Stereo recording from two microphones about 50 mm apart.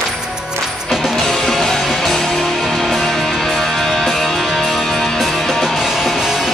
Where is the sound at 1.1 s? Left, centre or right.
Centre.